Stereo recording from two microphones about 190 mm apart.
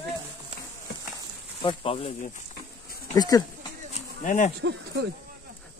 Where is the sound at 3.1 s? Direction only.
20° left (ahead or behind).